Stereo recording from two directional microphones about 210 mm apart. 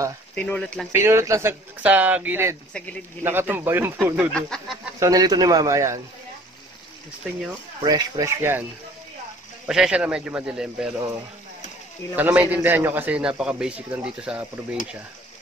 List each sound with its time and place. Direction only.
0.3 s a man's voice: 5° left (ahead or behind)
0.9 s a man's voice: 15° right (ahead or behind)
4.3 s a man's voice: 5° left (ahead or behind)
5.0 s a man's voice: 20° right (ahead or behind)
7.8 s a man's voice: 20° right (ahead or behind)
9.7 s a man's voice: 5° right (ahead or behind)
12.2 s a man's voice: 10° right (ahead or behind)